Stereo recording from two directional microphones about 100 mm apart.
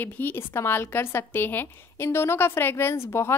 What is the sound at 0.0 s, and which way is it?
A woman's voice, 20° left (ahead or behind).